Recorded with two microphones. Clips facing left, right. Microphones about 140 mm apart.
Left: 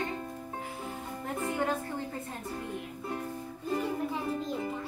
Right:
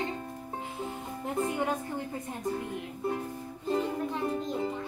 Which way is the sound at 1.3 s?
20° right (ahead or behind).